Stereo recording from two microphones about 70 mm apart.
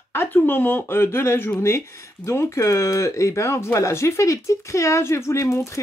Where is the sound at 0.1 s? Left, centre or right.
Left.